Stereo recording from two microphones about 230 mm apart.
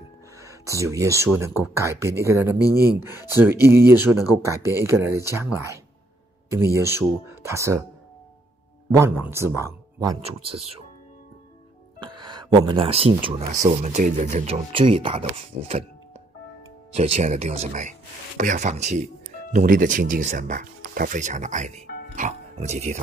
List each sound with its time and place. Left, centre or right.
0.4 s speech: centre
8.9 s speech: centre
12.2 s speech: centre
16.9 s speech: right